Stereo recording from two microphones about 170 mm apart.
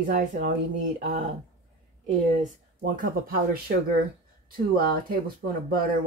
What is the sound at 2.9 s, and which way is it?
Speech, 60° right (ahead or behind).